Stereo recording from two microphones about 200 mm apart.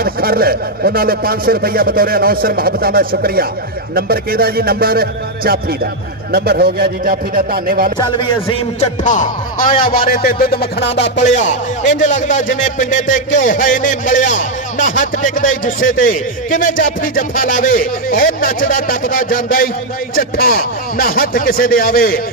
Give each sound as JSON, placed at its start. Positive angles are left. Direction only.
{"t": 0.0, "sound": "a man's voice", "side_deg": -50}
{"t": 8.7, "sound": "a man's voice", "side_deg": 35}
{"t": 11.1, "sound": "a man's voice", "side_deg": 35}